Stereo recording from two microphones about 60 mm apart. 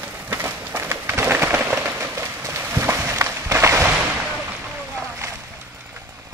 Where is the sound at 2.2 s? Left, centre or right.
Right.